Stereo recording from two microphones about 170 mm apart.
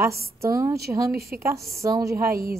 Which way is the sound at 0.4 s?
20° right (ahead or behind).